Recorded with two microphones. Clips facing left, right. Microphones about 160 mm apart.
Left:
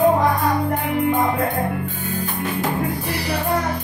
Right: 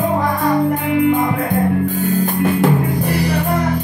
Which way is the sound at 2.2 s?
50° right (ahead or behind).